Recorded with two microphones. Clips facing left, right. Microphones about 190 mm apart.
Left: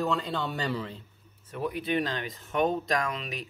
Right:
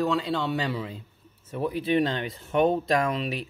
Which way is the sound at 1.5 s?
25° right (ahead or behind).